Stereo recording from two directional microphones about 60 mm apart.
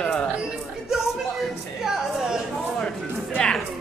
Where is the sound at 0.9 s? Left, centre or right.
Centre.